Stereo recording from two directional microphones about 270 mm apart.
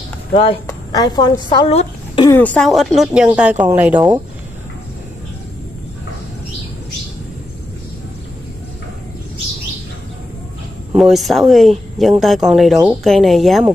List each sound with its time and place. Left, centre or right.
0.3 s a woman's voice: left; by 4.2 s centre
10.9 s a woman's voice: centre